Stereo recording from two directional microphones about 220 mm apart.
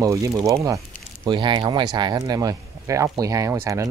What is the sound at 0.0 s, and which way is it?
Speech, 15° right (ahead or behind).